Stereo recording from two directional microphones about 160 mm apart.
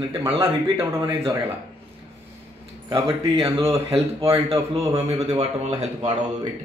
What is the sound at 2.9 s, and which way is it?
A man's voice, 35° right (ahead or behind).